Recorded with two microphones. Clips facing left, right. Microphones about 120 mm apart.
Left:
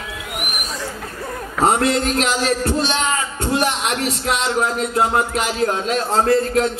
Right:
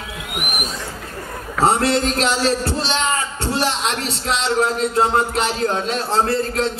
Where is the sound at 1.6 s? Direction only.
30° right (ahead or behind).